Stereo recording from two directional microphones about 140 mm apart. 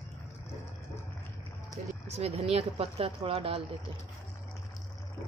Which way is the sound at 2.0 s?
50° right (ahead or behind).